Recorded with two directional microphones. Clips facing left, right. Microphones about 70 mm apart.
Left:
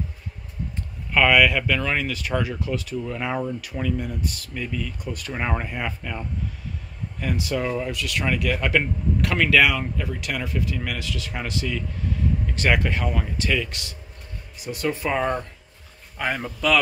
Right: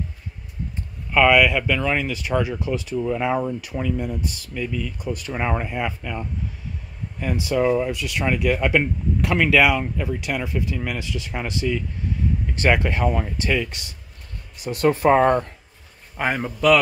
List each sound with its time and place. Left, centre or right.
1.1 s speech: centre
14.7 s speech: right
16.2 s speech: centre